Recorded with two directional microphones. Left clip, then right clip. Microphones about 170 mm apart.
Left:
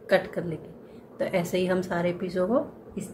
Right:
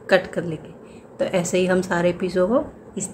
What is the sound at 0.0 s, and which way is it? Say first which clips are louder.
A woman's voice: right 5 dB; 15° right (ahead or behind).